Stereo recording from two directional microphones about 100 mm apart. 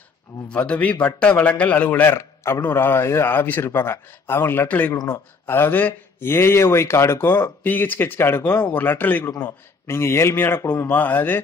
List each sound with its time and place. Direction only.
0.5 s a man's voice: 15° left (ahead or behind)
4.9 s speech: 40° left (ahead or behind)
5.5 s a man's voice: 20° left (ahead or behind)